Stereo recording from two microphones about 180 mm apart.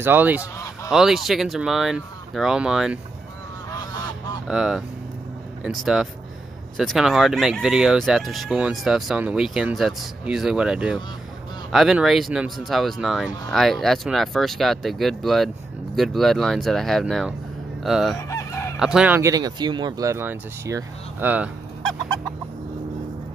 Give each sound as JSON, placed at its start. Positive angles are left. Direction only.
{"t": 0.0, "sound": "speech", "side_deg": -10}
{"t": 4.5, "sound": "speech", "side_deg": -5}
{"t": 18.3, "sound": "fowl", "side_deg": 15}
{"t": 18.8, "sound": "speech", "side_deg": -5}